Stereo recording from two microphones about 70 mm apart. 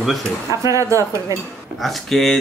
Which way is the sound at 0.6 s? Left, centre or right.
Right.